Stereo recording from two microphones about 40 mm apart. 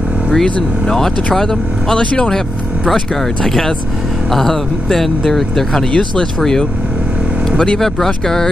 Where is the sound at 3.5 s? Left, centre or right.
Centre.